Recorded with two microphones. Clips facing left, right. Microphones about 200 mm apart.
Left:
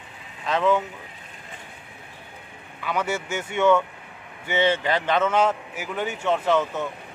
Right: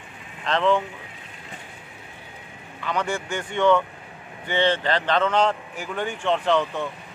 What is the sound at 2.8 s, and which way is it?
A man's voice, 5° left (ahead or behind).